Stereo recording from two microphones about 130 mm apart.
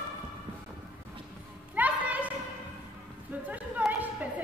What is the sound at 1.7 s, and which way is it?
Children playing, 10° right (ahead or behind).